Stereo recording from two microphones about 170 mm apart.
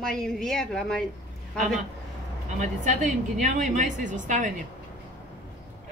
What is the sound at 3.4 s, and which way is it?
Speech, 45° right (ahead or behind).